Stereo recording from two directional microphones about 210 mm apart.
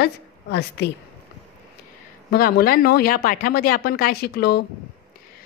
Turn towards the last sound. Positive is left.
turn(degrees=50)  # may be behind; listen again after turning